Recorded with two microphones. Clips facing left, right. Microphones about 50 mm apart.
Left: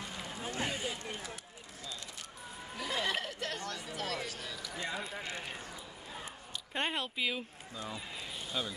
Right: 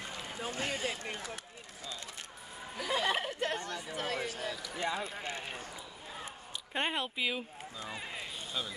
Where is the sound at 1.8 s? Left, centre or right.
Right.